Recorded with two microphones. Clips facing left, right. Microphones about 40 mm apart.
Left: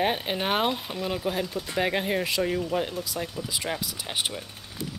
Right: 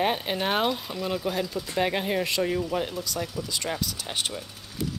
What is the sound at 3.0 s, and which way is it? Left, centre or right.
Speech, centre.